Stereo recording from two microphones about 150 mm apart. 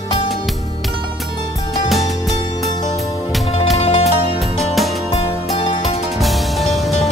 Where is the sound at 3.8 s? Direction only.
45° left (ahead or behind).